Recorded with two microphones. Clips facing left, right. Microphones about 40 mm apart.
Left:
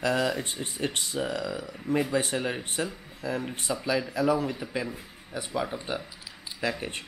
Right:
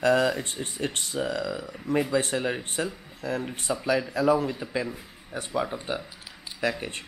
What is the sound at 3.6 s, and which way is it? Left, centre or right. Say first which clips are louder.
Speech: right 3 dB; right.